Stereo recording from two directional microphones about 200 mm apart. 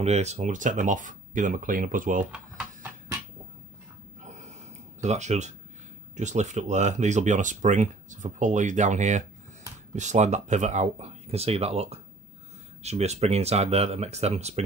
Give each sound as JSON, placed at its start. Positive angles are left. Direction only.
{"t": 0.0, "sound": "speech", "side_deg": -35}
{"t": 2.3, "sound": "a sound", "side_deg": -10}
{"t": 5.0, "sound": "speech", "side_deg": -35}